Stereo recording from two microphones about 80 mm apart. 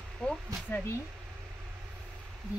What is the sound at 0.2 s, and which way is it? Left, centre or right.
Speech, centre.